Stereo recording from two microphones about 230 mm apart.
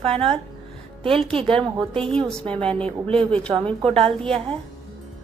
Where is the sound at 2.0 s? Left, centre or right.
Centre.